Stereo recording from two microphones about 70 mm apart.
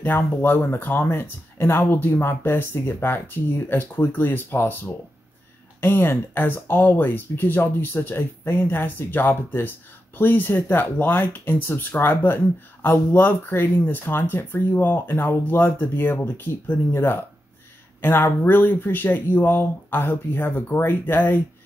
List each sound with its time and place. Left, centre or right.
0.0 s speech: left